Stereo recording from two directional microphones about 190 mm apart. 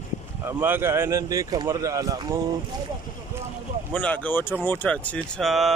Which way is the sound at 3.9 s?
5° left (ahead or behind).